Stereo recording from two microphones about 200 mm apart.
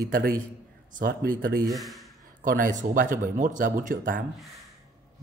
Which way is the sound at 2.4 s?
45° right (ahead or behind).